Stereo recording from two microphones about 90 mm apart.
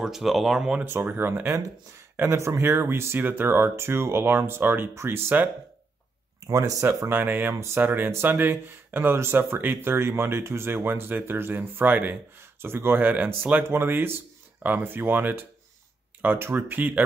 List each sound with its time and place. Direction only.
0.0 s speech: 5° right (ahead or behind)
0.8 s speech: 25° right (ahead or behind)
6.5 s speech: 35° right (ahead or behind); by 17.0 s 20° right (ahead or behind)